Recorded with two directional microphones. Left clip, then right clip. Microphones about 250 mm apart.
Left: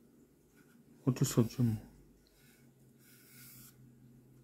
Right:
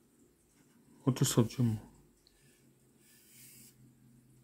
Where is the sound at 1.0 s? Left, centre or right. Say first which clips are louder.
Right 2 dB; centre.